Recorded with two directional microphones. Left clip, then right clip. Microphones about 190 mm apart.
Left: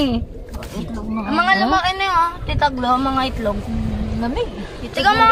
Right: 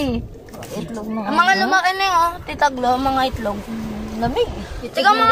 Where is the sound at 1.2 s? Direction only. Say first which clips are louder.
Right 1 dB; 25° right (ahead or behind).